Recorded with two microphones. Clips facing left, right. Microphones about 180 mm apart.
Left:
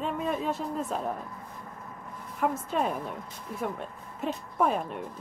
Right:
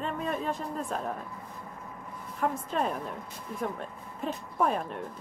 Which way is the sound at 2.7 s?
Centre (ahead or behind).